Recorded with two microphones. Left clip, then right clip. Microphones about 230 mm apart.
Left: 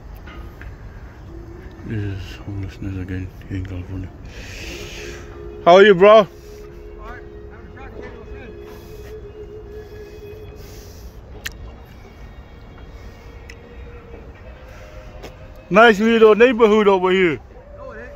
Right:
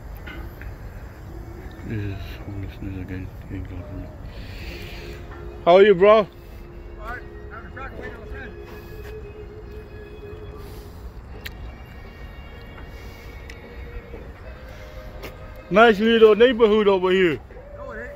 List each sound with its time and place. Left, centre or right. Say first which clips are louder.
1.9 s speech: left 3 dB; left
4.4 s music: left 6 dB; left
15.7 s a man's voice: left 3 dB; left